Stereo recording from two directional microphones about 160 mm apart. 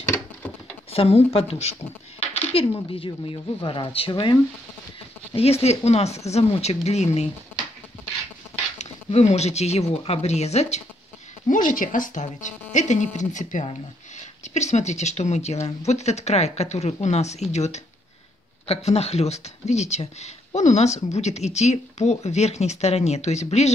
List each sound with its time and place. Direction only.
0.9 s speech: 40° left (ahead or behind)
5.3 s speech: 40° left (ahead or behind)
7.5 s a sound: 10° left (ahead or behind)
8.7 s speech: 45° left (ahead or behind)
11.4 s speech: 55° left (ahead or behind)